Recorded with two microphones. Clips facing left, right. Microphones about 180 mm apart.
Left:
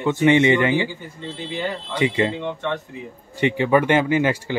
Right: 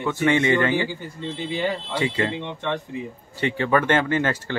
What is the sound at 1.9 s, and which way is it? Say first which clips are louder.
Speech: left 8 dB; 20° left (ahead or behind).